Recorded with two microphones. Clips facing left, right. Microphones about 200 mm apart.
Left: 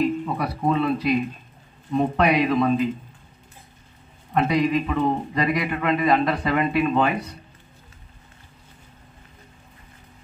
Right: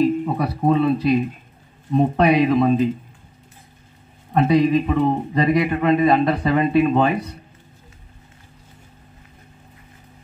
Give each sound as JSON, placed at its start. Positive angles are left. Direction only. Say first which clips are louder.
{"t": 0.3, "sound": "a man's voice", "louder": "right 4 dB", "side_deg": -30}
{"t": 4.3, "sound": "a man's voice", "louder": "right 5 dB", "side_deg": -30}